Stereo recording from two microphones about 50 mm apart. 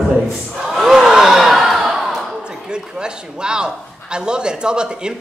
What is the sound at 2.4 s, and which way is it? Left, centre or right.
A man's voice, centre.